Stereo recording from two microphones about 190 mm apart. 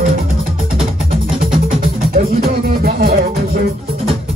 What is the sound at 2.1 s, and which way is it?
Music, 50° right (ahead or behind).